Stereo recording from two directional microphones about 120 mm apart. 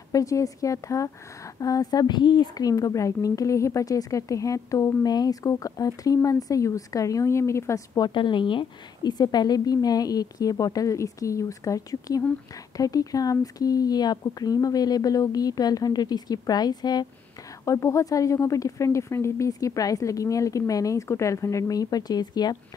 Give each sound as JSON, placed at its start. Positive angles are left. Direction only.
{"t": 0.1, "sound": "a woman's voice", "side_deg": 25}